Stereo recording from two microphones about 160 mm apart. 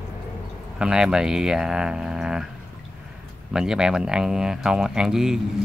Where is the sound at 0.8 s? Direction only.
5° right (ahead or behind).